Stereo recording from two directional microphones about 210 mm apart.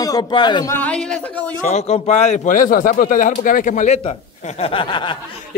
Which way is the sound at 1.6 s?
30° left (ahead or behind).